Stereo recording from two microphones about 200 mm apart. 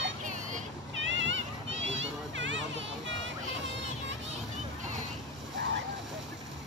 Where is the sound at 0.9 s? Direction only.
65° right (ahead or behind).